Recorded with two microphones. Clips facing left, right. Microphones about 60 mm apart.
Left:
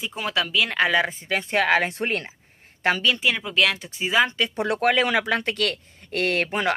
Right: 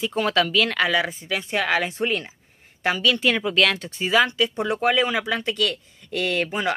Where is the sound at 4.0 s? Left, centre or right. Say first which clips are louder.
Right 1 dB; left.